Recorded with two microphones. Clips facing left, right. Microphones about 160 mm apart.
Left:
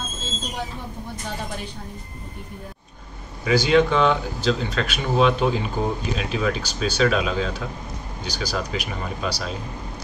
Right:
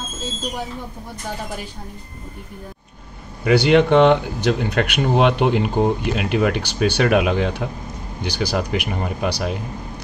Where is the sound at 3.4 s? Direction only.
65° right (ahead or behind).